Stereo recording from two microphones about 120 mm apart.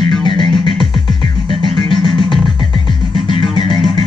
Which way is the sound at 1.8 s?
40° left (ahead or behind).